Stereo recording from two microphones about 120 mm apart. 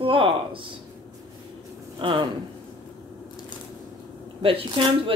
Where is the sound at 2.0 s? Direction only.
40° right (ahead or behind).